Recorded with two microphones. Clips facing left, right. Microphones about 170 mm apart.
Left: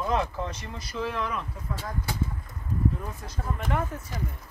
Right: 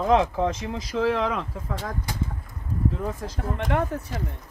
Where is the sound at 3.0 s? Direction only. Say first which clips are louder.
Right 6 dB; 90° right; by 4.0 s 70° right (ahead or behind).